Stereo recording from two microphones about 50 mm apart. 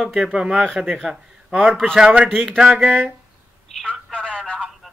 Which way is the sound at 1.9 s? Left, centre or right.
Centre.